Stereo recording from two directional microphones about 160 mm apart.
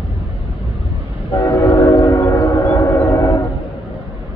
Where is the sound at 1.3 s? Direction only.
25° left (ahead or behind).